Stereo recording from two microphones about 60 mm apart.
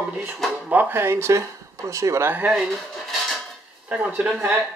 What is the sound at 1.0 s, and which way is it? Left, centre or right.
Speech, right.